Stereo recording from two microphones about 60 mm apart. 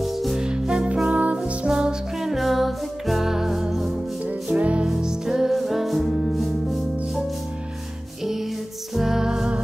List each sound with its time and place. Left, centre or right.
0.0 s music: centre
0.5 s music: centre
4.6 s music: right
4.8 s music: centre